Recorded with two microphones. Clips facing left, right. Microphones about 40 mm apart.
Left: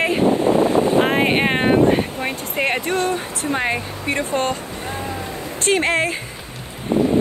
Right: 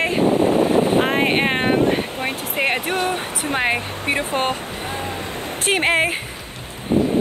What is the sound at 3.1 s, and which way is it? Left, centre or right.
Speech, right.